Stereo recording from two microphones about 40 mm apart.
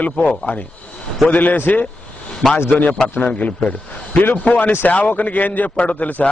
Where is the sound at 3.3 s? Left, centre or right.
Left.